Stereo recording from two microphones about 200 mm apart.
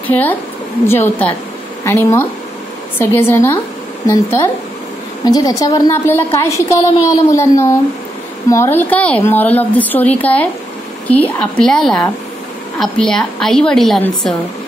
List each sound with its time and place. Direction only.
0.0 s a woman's voice: 10° left (ahead or behind)